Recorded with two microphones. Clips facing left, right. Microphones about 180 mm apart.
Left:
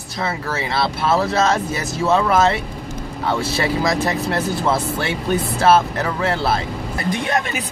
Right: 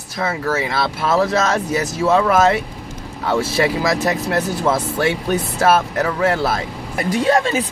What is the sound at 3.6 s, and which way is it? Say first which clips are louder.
Speech: right 1 dB; 30° left (ahead or behind).